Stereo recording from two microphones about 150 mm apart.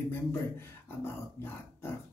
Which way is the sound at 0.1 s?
15° left (ahead or behind).